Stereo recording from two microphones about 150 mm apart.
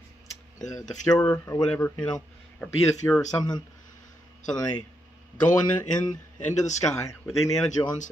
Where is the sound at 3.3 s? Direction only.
25° left (ahead or behind).